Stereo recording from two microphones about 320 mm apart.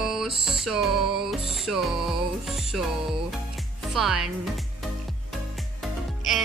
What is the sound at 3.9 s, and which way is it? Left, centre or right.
Speech, centre.